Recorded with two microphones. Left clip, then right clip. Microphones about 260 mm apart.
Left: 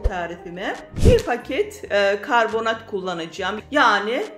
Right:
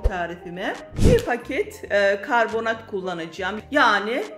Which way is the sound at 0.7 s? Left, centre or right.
Centre.